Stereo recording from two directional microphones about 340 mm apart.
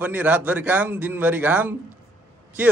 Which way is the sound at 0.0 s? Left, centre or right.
Centre.